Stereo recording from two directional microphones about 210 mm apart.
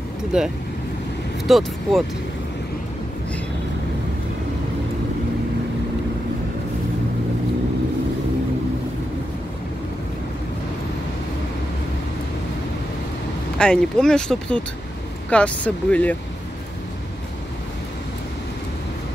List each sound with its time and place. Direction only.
0.3 s speech: 5° right (ahead or behind)
13.6 s speech: 5° left (ahead or behind)